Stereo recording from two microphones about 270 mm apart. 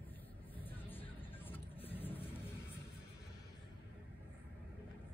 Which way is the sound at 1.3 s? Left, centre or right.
Centre.